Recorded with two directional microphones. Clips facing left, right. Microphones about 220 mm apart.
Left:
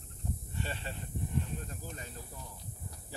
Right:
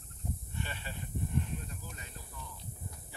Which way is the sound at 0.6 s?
35° left (ahead or behind).